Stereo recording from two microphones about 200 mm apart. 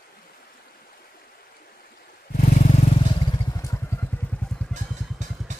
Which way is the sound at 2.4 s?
40° left (ahead or behind).